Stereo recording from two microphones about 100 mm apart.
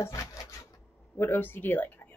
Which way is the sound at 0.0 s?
35° left (ahead or behind).